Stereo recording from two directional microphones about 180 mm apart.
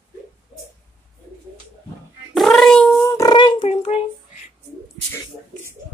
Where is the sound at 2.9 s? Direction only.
15° left (ahead or behind).